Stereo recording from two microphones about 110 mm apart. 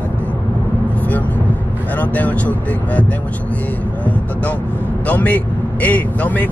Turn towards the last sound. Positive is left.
turn(degrees=15)  # may be behind; listen again after turning